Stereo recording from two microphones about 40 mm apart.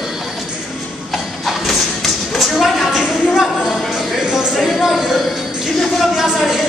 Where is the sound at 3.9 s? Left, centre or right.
Centre.